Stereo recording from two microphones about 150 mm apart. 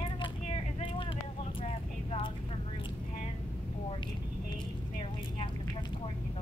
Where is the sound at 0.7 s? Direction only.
35° left (ahead or behind).